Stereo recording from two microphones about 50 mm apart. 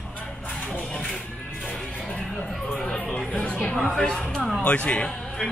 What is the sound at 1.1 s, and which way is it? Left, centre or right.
Music, centre.